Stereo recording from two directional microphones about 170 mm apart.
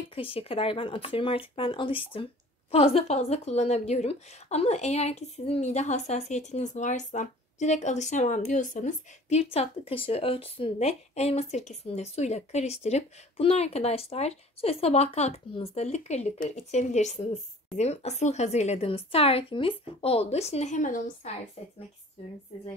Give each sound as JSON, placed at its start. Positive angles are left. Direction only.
{"t": 0.1, "sound": "a woman's voice", "side_deg": 35}
{"t": 22.2, "sound": "a woman's voice", "side_deg": 35}